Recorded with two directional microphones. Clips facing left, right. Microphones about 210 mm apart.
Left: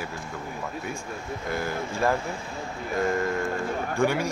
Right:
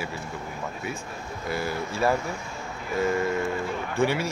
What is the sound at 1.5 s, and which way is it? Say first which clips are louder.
Speech: right 1 dB; 5° right (ahead or behind).